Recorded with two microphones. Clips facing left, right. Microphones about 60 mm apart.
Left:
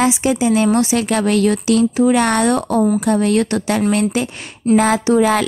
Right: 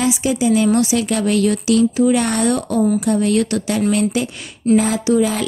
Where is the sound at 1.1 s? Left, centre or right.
Left.